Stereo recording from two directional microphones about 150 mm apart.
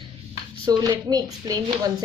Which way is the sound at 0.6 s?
25° right (ahead or behind).